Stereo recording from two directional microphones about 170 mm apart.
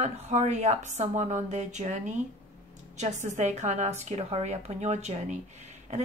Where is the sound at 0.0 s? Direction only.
40° right (ahead or behind).